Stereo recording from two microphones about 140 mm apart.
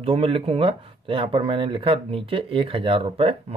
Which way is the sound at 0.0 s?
40° right (ahead or behind).